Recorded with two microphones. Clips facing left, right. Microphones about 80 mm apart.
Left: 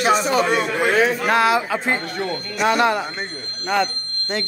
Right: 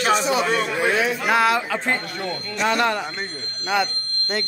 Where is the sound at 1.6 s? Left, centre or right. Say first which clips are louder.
Left 2 dB; centre.